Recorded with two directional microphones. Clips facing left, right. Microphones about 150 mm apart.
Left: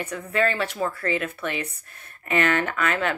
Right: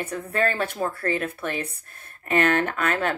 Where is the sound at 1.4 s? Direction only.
45° right (ahead or behind).